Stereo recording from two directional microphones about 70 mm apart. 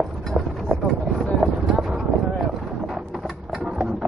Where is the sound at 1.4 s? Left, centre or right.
Centre.